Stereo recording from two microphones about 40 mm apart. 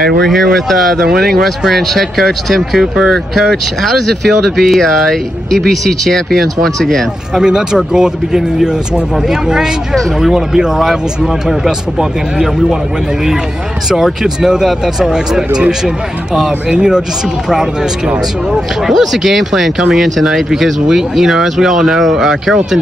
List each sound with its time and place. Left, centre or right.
0.2 s speech: centre
7.3 s speech: centre
14.2 s speech: centre
16.6 s speech: centre